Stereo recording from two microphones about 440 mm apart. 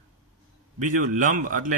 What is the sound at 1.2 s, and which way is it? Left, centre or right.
Speech, centre.